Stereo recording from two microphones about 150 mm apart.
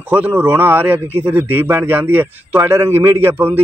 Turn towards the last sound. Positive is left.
turn(degrees=-15)  # may be behind; listen again after turning